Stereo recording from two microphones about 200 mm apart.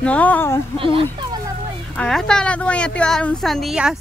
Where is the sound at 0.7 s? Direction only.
25° right (ahead or behind).